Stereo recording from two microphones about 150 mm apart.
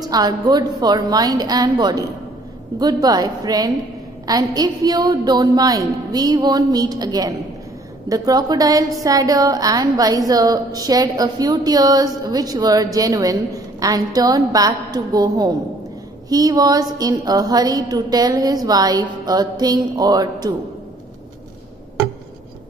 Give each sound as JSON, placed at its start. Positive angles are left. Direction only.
{"t": 0.0, "sound": "a woman's voice", "side_deg": -25}